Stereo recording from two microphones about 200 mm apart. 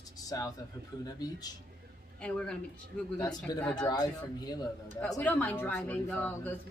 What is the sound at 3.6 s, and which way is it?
Speech, 5° left (ahead or behind).